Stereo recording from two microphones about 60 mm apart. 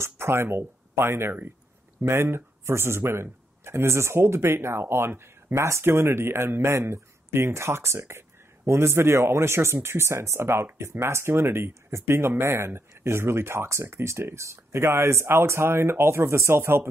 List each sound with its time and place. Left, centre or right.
0.0 s speech: right